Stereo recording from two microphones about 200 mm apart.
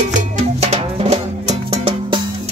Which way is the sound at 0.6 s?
30° right (ahead or behind).